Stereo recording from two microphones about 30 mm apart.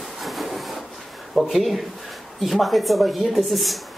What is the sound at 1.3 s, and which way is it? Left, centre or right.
Speech, centre.